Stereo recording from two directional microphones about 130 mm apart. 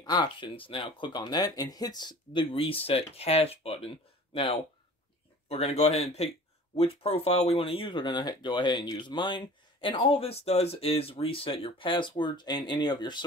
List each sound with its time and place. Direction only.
0.0 s speech: 35° left (ahead or behind)
5.5 s speech: 50° left (ahead or behind); by 13.2 s 35° left (ahead or behind)